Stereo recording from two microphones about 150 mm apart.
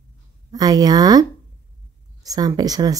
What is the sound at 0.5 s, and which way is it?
A woman's voice, 25° right (ahead or behind).